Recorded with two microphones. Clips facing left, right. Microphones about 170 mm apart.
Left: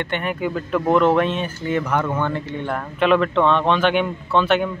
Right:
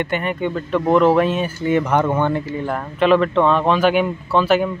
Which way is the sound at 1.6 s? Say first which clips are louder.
Right 5 dB; 20° right (ahead or behind).